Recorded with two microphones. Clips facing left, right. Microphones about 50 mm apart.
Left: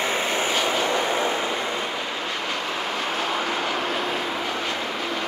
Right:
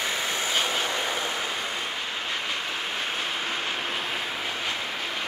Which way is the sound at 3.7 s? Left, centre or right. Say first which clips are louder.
Left 5 dB; left.